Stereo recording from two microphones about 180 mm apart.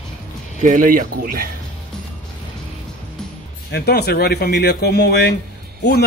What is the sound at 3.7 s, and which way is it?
A man's voice, 65° left (ahead or behind).